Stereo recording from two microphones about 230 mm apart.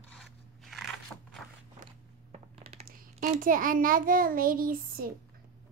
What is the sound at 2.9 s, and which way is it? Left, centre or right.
A child's voice, right.